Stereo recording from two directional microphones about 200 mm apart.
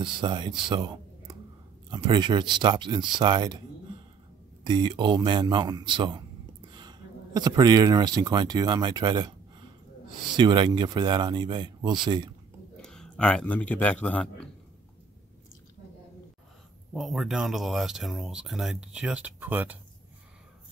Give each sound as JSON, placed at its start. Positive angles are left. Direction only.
{"t": 0.0, "sound": "speech", "side_deg": -25}
{"t": 4.6, "sound": "a man's voice", "side_deg": -20}
{"t": 10.3, "sound": "speech", "side_deg": -25}
{"t": 12.8, "sound": "speech", "side_deg": 5}
{"t": 16.9, "sound": "speech", "side_deg": 0}